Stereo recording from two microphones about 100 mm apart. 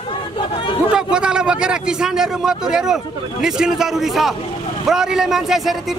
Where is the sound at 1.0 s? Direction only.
10° right (ahead or behind).